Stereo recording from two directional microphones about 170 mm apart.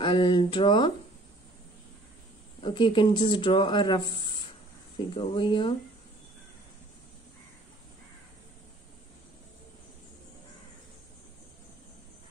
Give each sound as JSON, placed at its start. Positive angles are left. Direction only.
{"t": 0.0, "sound": "speech", "side_deg": 30}
{"t": 2.6, "sound": "speech", "side_deg": 30}